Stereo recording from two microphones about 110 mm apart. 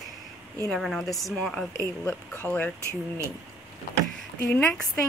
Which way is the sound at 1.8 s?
20° left (ahead or behind).